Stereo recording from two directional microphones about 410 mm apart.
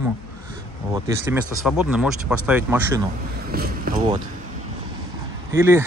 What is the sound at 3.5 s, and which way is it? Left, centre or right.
Speech, right.